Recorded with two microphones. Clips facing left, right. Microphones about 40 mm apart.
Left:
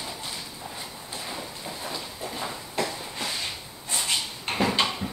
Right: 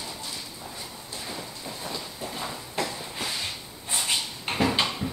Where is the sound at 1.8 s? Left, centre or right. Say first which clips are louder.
Even; centre.